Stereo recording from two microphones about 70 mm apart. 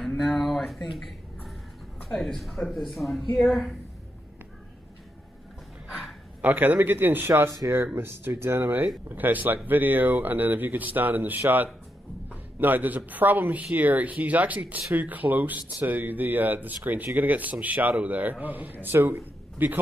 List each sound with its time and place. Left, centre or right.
0.2 s speech: centre
0.9 s a sound: centre
2.0 s speech: centre
6.4 s speech: right